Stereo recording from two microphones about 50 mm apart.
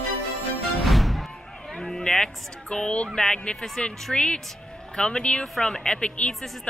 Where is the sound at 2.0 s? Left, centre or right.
Centre.